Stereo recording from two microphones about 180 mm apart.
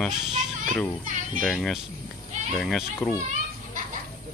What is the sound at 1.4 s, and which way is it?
Speech, centre (ahead or behind).